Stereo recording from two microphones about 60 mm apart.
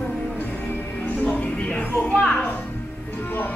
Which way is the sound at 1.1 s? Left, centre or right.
Left.